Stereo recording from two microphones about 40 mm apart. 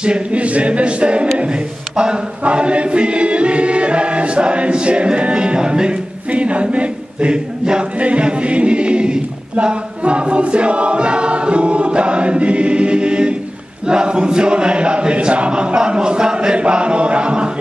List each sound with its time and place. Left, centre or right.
0.0 s speech: right
13.8 s chant: right